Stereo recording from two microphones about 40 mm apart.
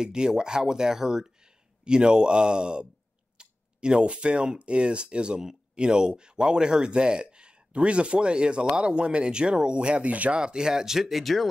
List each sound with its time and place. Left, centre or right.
0.0 s speech: centre; by 10.3 s right
10.3 s speech: right; by 11.4 s centre